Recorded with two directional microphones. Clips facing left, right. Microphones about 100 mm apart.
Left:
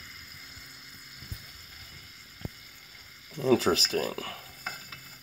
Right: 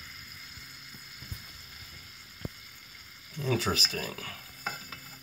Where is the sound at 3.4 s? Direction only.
30° left (ahead or behind).